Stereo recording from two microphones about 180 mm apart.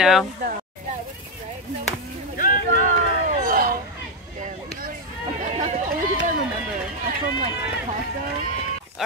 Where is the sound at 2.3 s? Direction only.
50° left (ahead or behind).